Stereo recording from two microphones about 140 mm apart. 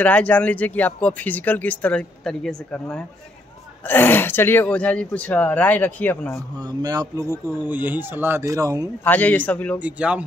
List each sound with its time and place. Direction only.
0.0 s speech: 10° left (ahead or behind)
6.7 s speech: 25° right (ahead or behind)
9.0 s speech: 10° left (ahead or behind)
9.8 s a man's voice: 10° right (ahead or behind)